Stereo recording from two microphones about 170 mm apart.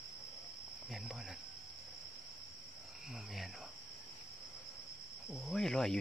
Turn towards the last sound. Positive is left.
turn(degrees=5)  # may be behind; listen again after turning